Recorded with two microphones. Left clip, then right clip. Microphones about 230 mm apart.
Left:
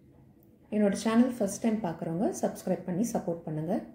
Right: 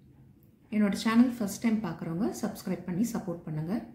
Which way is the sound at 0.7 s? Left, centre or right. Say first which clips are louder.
Left 2 dB; centre.